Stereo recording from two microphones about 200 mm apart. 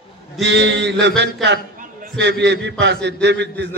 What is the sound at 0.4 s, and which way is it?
A man's voice, 60° right (ahead or behind).